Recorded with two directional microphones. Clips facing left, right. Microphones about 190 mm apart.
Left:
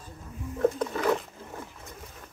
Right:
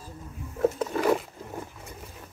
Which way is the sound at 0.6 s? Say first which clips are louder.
Right 1 dB; 5° right (ahead or behind).